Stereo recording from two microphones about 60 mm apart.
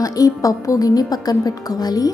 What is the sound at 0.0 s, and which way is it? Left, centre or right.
A woman's voice, left.